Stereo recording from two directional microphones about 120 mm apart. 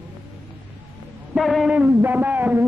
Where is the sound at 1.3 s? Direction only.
Centre (ahead or behind).